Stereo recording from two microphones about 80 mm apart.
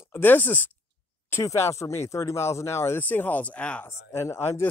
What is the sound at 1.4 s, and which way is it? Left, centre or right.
Speech, left.